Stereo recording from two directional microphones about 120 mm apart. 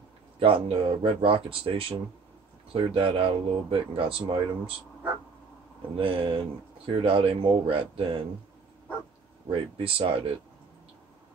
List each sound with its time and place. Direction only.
0.4 s speech: 50° right (ahead or behind)
5.9 s speech: 45° right (ahead or behind)
9.5 s speech: 50° right (ahead or behind)